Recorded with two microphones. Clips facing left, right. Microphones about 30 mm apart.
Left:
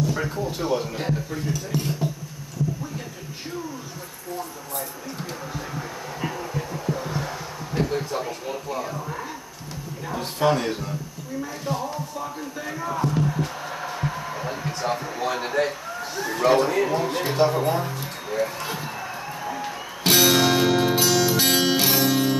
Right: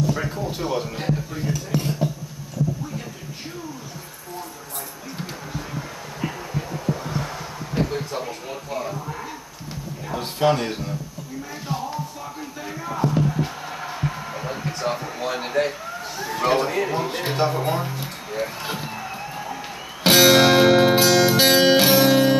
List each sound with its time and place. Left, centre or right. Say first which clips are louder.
0.0 s speech: right 1 dB; centre
5.5 s music: even; centre
10.1 s a man's voice: right 1 dB; centre
11.7 s music: right 1 dB; centre
17.3 s a sound: left 2 dB; centre
20.0 s music: right 4 dB; right